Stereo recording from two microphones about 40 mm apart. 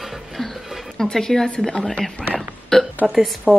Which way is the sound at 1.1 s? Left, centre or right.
Centre.